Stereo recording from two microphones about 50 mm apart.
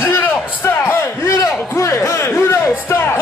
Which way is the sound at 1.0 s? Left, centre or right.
Left.